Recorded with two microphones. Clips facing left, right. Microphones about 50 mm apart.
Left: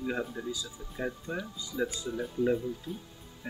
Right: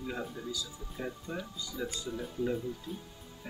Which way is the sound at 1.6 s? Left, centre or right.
Left.